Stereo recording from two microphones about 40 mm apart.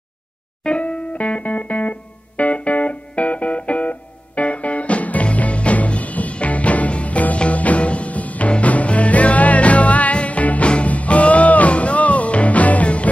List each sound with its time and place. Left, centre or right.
0.7 s music: left